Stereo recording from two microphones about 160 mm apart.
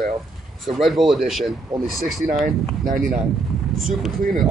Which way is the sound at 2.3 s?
60° right (ahead or behind).